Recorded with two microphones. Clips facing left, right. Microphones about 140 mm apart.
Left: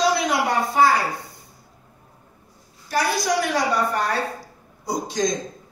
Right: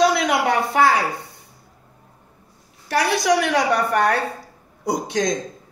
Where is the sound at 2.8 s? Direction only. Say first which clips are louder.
Right 3 dB; 70° right (ahead or behind).